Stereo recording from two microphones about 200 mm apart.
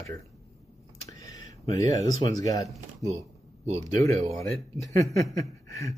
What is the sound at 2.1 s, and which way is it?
Speech, 20° left (ahead or behind).